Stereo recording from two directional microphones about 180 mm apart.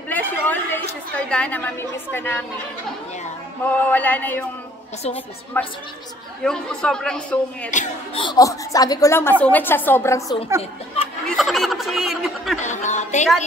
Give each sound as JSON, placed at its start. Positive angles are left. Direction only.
{"t": 0.1, "sound": "a sound", "side_deg": 10}
{"t": 1.1, "sound": "a woman's voice", "side_deg": 5}
{"t": 3.9, "sound": "a woman's voice", "side_deg": 10}
{"t": 5.5, "sound": "a woman's voice", "side_deg": 10}
{"t": 7.7, "sound": "speech", "side_deg": 40}
{"t": 8.2, "sound": "a woman's voice", "side_deg": 20}
{"t": 11.2, "sound": "speech", "side_deg": 0}
{"t": 12.6, "sound": "a woman's voice", "side_deg": 40}